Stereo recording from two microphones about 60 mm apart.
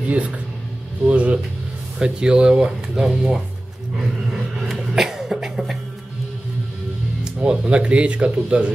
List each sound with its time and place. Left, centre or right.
1.0 s speech: right
4.6 s a sound: centre
7.3 s speech: centre